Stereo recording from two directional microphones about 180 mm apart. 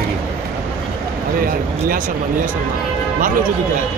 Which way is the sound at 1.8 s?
50° right (ahead or behind).